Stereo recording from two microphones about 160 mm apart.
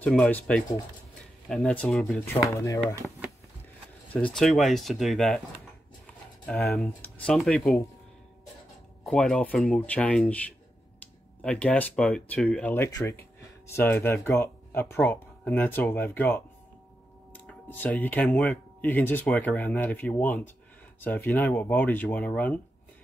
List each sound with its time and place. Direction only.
0.0 s speech: 5° left (ahead or behind)
2.5 s speech: 20° left (ahead or behind)
4.1 s speech: 5° left (ahead or behind)
6.4 s speech: centre (ahead or behind)
9.0 s speech: centre (ahead or behind)
11.4 s speech: 10° left (ahead or behind)
17.3 s a sound: 10° left (ahead or behind)
17.9 s speech: 5° left (ahead or behind)